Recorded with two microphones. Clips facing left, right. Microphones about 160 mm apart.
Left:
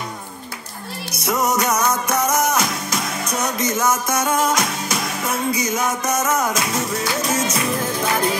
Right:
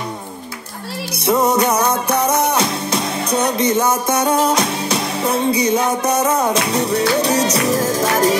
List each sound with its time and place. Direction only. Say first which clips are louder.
1.2 s music: right 5 dB; 30° right (ahead or behind)
7.3 s music: right 5 dB; 75° right (ahead or behind)
7.7 s music: right 6 dB; 40° right (ahead or behind)
8.0 s music: right 4 dB; 90° right